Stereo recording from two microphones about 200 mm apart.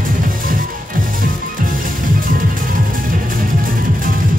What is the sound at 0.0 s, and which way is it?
Music, 45° right (ahead or behind).